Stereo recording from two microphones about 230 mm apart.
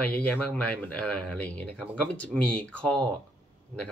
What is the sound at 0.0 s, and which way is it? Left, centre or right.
Speech, centre.